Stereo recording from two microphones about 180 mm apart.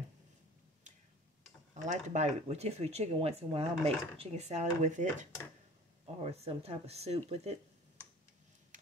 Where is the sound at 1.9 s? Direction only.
40° right (ahead or behind).